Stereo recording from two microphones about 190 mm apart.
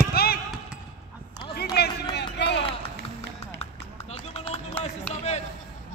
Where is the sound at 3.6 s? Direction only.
35° left (ahead or behind).